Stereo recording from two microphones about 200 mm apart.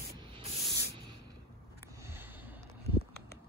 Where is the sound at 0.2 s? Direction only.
25° right (ahead or behind).